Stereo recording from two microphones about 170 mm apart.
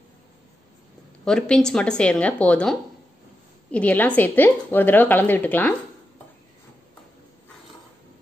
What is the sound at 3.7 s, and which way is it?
A woman's voice, 10° left (ahead or behind).